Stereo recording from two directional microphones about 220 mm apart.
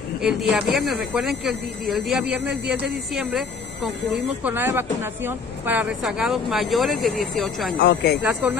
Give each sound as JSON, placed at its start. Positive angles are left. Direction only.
{"t": 0.2, "sound": "speech", "side_deg": 0}
{"t": 7.8, "sound": "speech", "side_deg": 50}
{"t": 8.3, "sound": "speech", "side_deg": 0}